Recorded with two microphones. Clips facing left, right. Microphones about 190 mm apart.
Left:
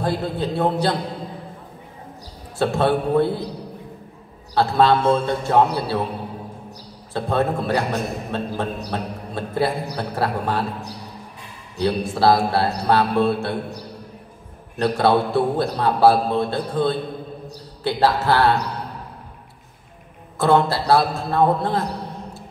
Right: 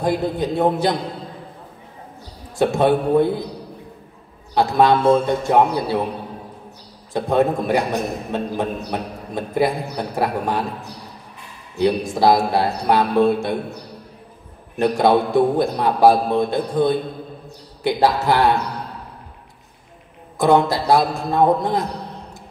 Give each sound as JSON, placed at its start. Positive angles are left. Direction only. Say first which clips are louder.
{"t": 0.0, "sound": "a man's voice", "louder": "right 3 dB", "side_deg": -15}
{"t": 2.6, "sound": "a man's voice", "louder": "right 3 dB", "side_deg": -15}
{"t": 4.6, "sound": "a man's voice", "louder": "right 1 dB", "side_deg": -15}
{"t": 7.2, "sound": "a man's voice", "louder": "right 3 dB", "side_deg": -15}
{"t": 11.8, "sound": "a man's voice", "louder": "right 2 dB", "side_deg": -15}
{"t": 14.8, "sound": "a man's voice", "louder": "right 2 dB", "side_deg": -15}
{"t": 20.3, "sound": "a man's voice", "louder": "right 2 dB", "side_deg": -15}